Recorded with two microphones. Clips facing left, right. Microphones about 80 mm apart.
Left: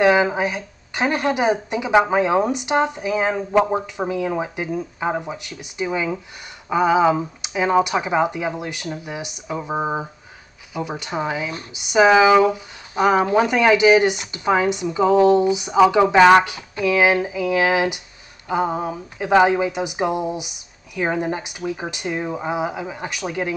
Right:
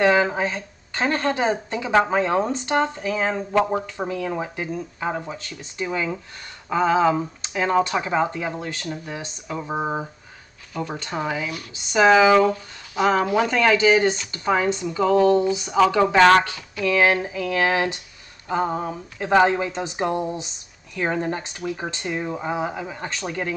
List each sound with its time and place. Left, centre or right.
0.0 s speech: centre